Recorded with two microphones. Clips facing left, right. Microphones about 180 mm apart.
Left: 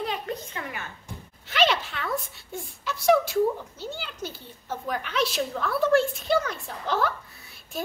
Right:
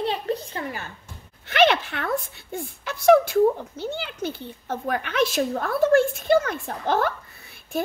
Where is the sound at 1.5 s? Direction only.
60° right (ahead or behind).